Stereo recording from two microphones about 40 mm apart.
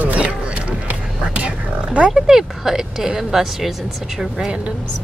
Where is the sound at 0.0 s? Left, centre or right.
Right.